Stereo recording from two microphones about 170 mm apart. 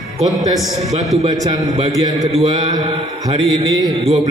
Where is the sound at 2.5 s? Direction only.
25° right (ahead or behind).